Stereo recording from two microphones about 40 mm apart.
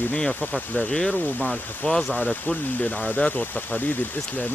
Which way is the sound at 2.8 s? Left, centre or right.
Left.